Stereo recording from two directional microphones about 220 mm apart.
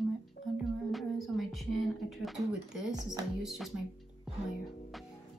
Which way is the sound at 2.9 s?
20° right (ahead or behind).